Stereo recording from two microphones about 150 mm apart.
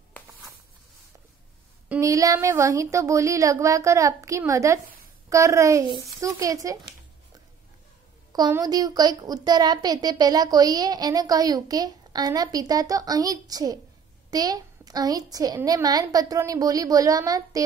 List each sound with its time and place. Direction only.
2.0 s a woman's voice: 20° right (ahead or behind)
8.3 s a woman's voice: 25° right (ahead or behind)